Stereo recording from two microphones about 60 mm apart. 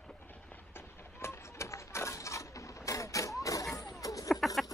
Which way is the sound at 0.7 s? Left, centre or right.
Left.